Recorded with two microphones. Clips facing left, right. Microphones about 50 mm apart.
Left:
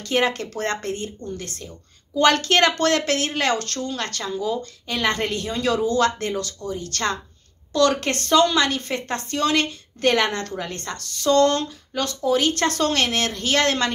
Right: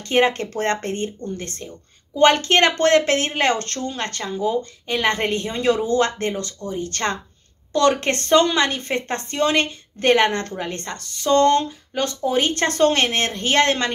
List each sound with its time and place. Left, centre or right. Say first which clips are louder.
0.0 s speech: right 3 dB; right